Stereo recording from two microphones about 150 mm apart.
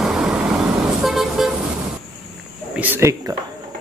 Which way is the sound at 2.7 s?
15° right (ahead or behind).